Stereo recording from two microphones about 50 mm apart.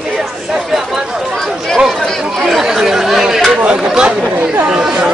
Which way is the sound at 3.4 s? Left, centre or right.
Centre.